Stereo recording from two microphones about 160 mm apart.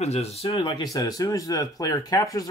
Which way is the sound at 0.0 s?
40° left (ahead or behind).